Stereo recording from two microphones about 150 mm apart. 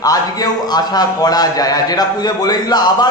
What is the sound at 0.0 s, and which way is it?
A man's voice, 25° left (ahead or behind).